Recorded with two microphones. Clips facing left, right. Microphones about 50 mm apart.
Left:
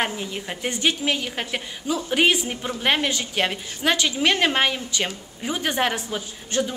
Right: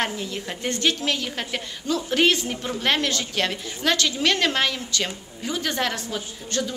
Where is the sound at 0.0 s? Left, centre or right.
Centre.